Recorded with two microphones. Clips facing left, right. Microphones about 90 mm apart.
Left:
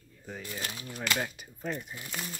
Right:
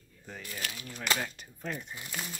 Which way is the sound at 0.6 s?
25° left (ahead or behind).